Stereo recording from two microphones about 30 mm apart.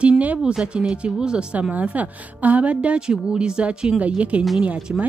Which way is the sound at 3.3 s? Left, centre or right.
Right.